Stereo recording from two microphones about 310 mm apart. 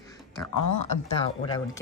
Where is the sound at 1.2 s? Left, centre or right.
Centre.